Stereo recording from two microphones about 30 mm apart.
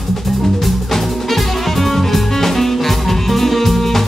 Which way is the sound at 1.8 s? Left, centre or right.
Centre.